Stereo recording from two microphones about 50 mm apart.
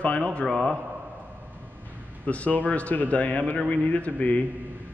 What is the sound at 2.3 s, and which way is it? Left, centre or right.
A man's voice, left.